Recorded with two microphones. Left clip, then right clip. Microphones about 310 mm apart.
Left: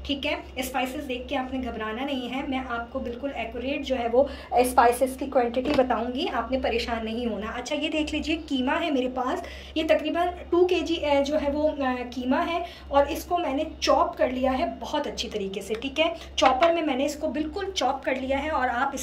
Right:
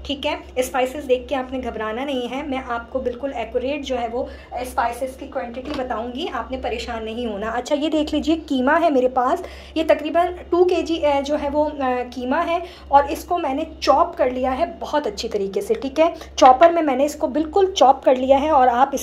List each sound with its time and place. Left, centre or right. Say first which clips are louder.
0.1 s a woman's voice: right 5 dB; centre
5.3 s a woman's voice: left 4 dB; left
6.1 s a woman's voice: right 1 dB; centre
7.4 s a woman's voice: right 8 dB; centre